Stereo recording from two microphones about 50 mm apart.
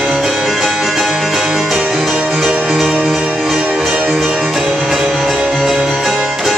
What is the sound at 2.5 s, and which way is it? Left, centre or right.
Music, centre.